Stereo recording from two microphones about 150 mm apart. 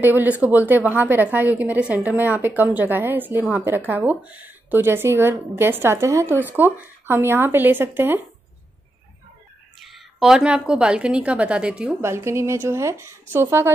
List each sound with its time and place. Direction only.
0.0 s speech: 15° right (ahead or behind)
9.8 s speech: centre (ahead or behind)
12.1 s speech: 20° right (ahead or behind)